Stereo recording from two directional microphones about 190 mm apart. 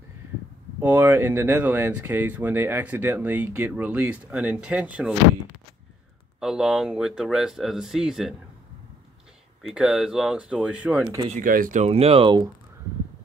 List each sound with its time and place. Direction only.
0.7 s speech: 10° right (ahead or behind)
6.4 s speech: 5° right (ahead or behind)
9.6 s speech: centre (ahead or behind)
11.3 s speech: 45° right (ahead or behind); by 12.4 s 25° right (ahead or behind)